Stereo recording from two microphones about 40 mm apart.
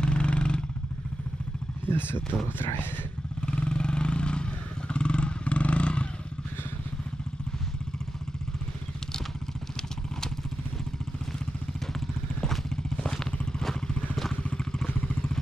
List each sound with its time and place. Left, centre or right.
0.0 s vehicle: left
1.9 s speech: left
3.4 s vehicle: left
12.9 s vehicle: centre
14.6 s vehicle: centre